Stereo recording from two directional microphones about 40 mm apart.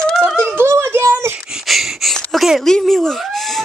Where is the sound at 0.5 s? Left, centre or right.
Right.